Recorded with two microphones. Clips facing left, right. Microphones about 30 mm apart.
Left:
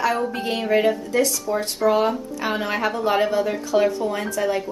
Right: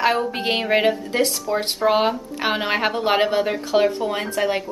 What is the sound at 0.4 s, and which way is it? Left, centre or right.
A woman's voice, right.